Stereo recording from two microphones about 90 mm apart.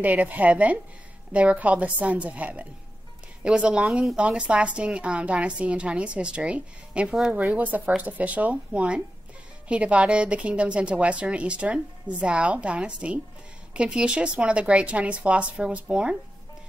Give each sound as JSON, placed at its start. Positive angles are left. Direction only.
{"t": 0.0, "sound": "speech", "side_deg": -15}
{"t": 7.3, "sound": "speech", "side_deg": -20}